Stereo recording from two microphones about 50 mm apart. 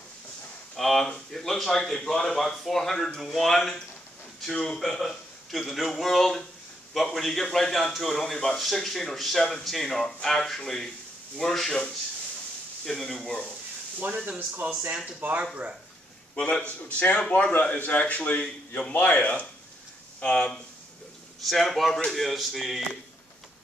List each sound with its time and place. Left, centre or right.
0.7 s a man's voice: centre
15.1 s speech: right
16.3 s a man's voice: left
21.5 s a man's voice: centre